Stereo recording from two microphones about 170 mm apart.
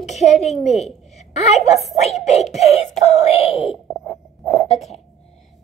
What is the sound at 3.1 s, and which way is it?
Speech, 40° left (ahead or behind).